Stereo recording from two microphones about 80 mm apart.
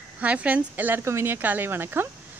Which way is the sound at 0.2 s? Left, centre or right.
Centre.